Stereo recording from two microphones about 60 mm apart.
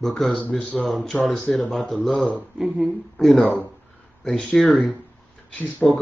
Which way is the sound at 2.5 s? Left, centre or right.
Centre.